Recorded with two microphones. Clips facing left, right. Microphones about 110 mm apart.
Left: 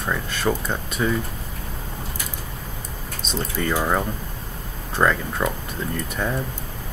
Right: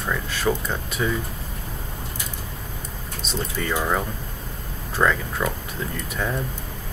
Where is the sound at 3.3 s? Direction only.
Centre (ahead or behind).